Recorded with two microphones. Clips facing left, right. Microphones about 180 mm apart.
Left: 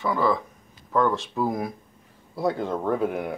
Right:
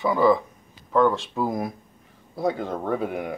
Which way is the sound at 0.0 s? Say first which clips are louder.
Right 4 dB; centre (ahead or behind).